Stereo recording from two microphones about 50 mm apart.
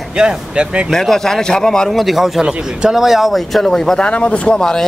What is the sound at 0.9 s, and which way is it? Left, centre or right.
A man's voice, centre.